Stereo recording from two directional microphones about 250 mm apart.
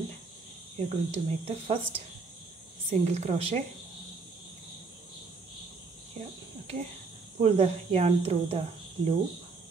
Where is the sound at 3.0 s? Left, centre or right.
Right.